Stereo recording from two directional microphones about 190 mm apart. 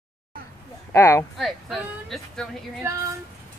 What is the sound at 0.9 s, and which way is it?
Speech, 15° left (ahead or behind).